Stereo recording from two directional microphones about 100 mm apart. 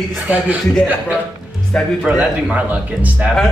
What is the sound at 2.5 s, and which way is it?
Speech, 15° right (ahead or behind).